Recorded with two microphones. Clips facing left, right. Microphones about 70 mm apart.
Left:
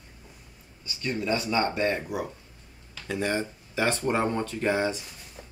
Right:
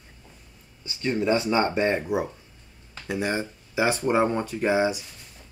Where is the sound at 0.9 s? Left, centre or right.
Right.